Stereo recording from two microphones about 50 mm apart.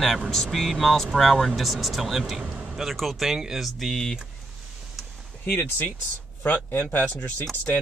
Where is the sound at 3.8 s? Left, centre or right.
Centre.